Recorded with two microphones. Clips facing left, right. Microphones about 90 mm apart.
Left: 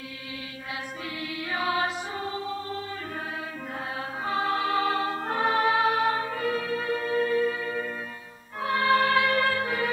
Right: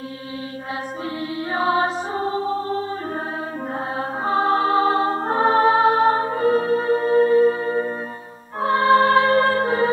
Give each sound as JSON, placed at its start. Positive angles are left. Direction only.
{"t": 1.5, "sound": "music", "side_deg": -35}
{"t": 4.2, "sound": "music", "side_deg": -35}